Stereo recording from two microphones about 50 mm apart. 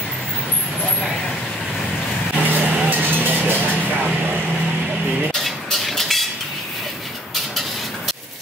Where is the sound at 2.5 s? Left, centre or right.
Right.